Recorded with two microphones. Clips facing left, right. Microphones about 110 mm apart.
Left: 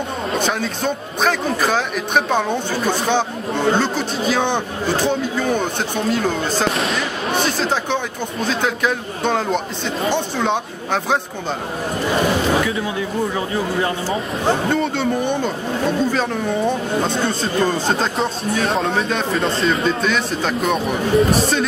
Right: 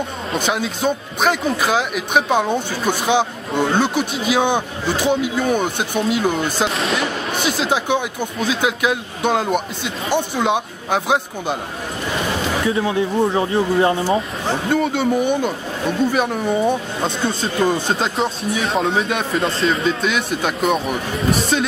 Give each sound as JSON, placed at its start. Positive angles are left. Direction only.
{"t": 0.5, "sound": "speech", "side_deg": -5}
{"t": 12.6, "sound": "speech", "side_deg": -25}
{"t": 14.7, "sound": "speech", "side_deg": -5}